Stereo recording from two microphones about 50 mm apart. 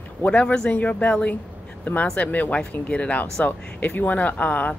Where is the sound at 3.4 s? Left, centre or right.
Left.